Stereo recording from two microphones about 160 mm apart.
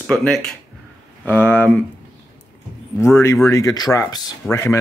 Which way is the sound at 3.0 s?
15° left (ahead or behind).